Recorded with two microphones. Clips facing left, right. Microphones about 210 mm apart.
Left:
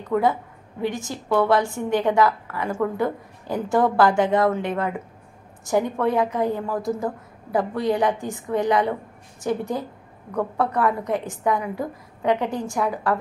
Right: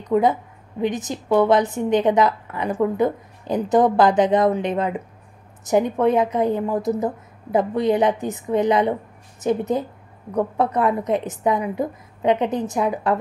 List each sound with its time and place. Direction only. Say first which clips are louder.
0.0 s a woman's voice: right 3 dB; 20° right (ahead or behind)